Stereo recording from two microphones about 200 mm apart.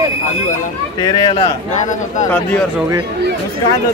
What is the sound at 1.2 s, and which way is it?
Speech, 30° left (ahead or behind).